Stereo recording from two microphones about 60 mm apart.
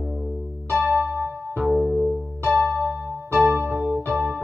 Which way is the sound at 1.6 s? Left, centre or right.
Centre.